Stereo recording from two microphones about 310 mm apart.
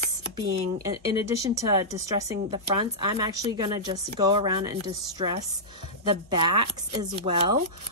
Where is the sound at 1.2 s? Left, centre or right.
Centre.